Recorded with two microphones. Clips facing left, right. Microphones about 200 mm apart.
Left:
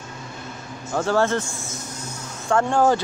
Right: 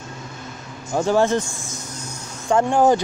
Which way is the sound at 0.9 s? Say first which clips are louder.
Right 3 dB; 15° right (ahead or behind).